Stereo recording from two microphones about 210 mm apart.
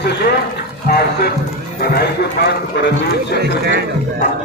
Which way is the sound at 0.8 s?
45° left (ahead or behind).